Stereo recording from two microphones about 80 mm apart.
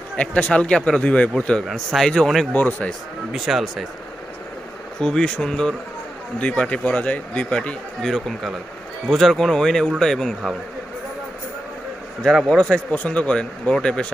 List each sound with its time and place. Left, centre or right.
0.2 s speech: centre
1.7 s speech: centre
2.5 s a man's voice: centre
3.3 s speech: centre
5.0 s speech: centre
8.1 s speech: centre
12.4 s speech: centre